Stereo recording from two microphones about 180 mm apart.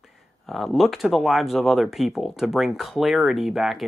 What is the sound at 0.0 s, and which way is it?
Speech, centre (ahead or behind).